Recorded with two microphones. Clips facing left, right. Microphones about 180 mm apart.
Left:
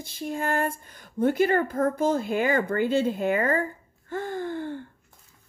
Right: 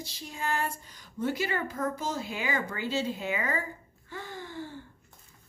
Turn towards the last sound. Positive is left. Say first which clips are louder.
# left 9 dB
turn(degrees=55)  # may be behind; listen again after turning